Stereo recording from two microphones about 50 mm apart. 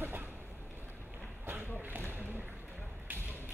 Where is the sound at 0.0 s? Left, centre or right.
Right.